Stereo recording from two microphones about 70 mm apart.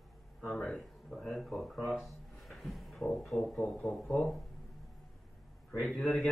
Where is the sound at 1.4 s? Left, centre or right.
Centre.